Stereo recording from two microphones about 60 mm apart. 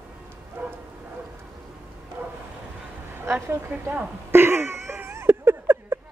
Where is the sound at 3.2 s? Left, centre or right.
Right.